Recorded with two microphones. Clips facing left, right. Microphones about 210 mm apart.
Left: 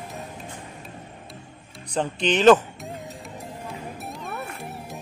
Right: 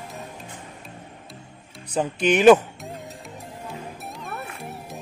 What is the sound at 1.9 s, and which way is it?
Speech, 10° right (ahead or behind).